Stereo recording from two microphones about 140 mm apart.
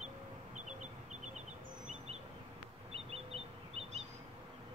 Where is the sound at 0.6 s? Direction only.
60° right (ahead or behind).